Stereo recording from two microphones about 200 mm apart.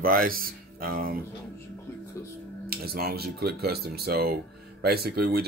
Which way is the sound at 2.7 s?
50° right (ahead or behind).